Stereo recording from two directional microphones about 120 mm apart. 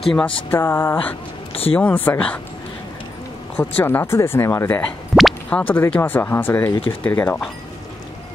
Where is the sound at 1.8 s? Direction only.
15° left (ahead or behind).